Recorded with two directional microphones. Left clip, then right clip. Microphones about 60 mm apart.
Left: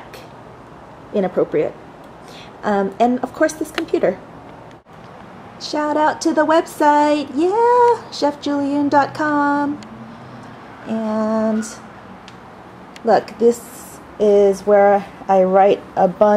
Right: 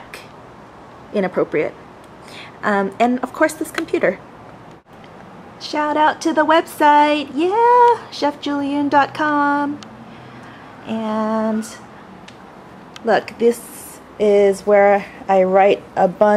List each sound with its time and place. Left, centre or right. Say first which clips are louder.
1.1 s speech: left 1 dB; right
2.6 s a woman's voice: even; centre
5.6 s a woman's voice: right 1 dB; centre
10.9 s a woman's voice: left 1 dB; centre
13.0 s a woman's voice: left 1 dB; centre